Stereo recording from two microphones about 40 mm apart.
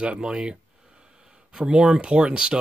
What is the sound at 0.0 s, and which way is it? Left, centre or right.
Speech, right.